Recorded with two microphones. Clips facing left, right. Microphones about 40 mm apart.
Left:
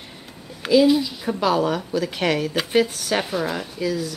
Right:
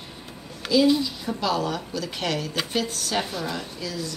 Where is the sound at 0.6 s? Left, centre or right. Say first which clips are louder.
Left 4 dB; centre.